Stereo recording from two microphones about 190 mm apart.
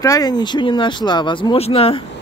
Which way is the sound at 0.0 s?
20° left (ahead or behind).